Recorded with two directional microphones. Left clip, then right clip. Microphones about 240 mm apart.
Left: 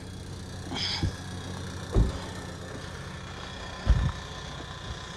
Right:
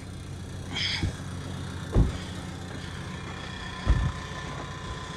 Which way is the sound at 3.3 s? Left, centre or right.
Right.